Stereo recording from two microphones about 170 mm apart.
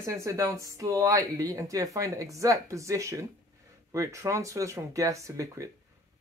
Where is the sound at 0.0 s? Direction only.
20° right (ahead or behind).